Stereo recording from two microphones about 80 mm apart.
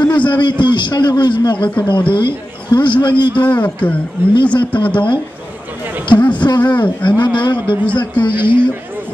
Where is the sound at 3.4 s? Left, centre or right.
Centre.